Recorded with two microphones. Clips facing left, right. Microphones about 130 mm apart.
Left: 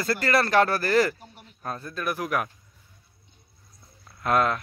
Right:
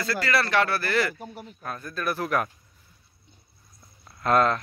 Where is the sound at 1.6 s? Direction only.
25° left (ahead or behind).